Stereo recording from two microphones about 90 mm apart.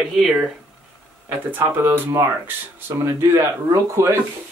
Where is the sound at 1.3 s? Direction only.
25° right (ahead or behind).